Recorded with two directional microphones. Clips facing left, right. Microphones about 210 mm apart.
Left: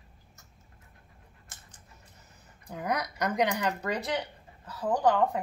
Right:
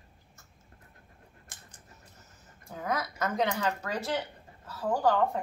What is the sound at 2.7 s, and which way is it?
Speech, 15° left (ahead or behind).